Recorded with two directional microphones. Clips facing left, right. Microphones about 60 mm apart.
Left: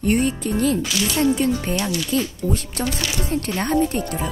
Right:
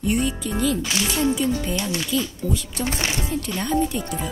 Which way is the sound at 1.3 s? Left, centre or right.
Left.